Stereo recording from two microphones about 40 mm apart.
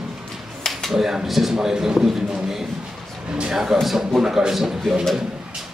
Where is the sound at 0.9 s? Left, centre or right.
Centre.